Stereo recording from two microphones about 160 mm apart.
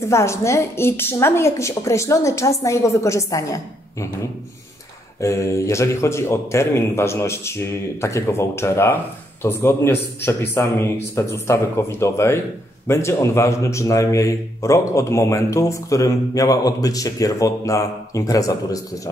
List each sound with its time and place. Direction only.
0.0 s speech: 15° left (ahead or behind)
5.2 s a man's voice: 20° left (ahead or behind)